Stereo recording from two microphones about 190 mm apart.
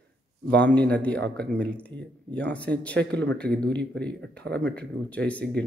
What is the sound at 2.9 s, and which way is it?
Speech, 65° right (ahead or behind).